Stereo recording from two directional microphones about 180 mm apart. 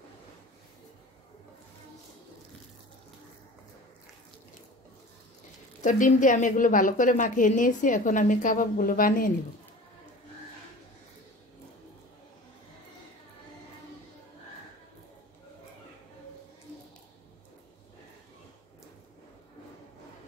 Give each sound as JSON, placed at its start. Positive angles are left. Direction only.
{"t": 5.8, "sound": "a woman's voice", "side_deg": 45}